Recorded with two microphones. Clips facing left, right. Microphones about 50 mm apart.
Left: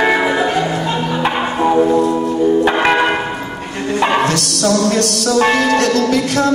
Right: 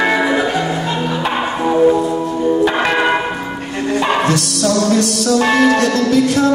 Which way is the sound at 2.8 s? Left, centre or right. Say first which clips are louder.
Left 1 dB; centre.